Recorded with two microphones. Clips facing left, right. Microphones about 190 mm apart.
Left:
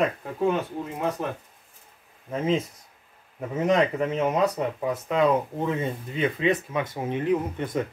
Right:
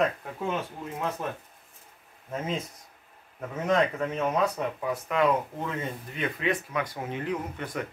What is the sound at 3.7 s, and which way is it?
Speech, 20° left (ahead or behind).